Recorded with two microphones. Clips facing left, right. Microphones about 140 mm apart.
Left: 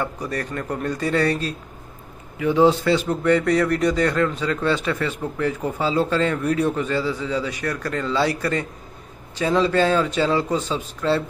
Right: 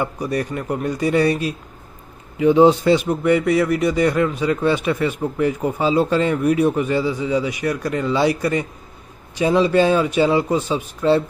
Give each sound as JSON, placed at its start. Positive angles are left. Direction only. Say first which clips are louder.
{"t": 0.0, "sound": "a man's voice", "louder": "right 4 dB", "side_deg": -15}